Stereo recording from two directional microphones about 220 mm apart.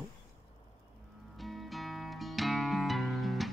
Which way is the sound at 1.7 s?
Centre (ahead or behind).